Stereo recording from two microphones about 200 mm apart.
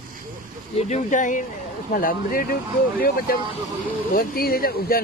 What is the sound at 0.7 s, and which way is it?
Speech, 35° left (ahead or behind).